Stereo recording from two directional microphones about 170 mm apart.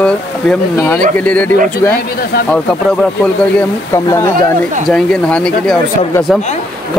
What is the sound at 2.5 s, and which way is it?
Speech, 5° left (ahead or behind).